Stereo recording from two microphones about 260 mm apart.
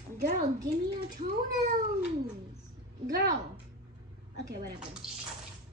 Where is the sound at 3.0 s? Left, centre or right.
Right.